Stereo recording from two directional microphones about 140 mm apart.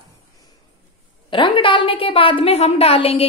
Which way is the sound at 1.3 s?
35° left (ahead or behind).